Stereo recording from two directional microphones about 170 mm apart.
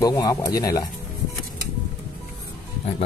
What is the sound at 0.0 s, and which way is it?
Speech, 20° left (ahead or behind).